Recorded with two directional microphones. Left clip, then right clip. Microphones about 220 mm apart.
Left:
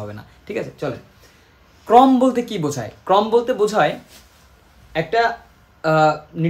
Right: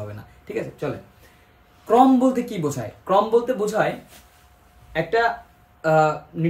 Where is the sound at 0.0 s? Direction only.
15° left (ahead or behind).